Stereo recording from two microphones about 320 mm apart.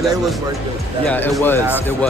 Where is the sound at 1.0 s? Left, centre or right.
Centre.